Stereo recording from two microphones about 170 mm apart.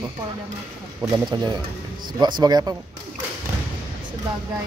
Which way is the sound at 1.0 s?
25° right (ahead or behind).